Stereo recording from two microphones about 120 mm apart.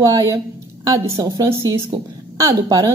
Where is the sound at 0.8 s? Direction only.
25° right (ahead or behind).